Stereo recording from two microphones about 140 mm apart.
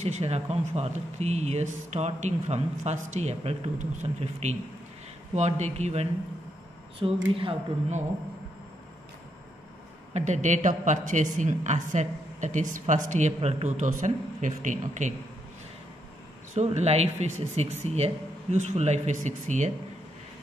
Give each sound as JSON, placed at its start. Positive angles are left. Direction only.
{"t": 0.0, "sound": "speech", "side_deg": -50}
{"t": 7.0, "sound": "speech", "side_deg": -40}
{"t": 10.1, "sound": "a woman's voice", "side_deg": -55}
{"t": 16.5, "sound": "speech", "side_deg": -50}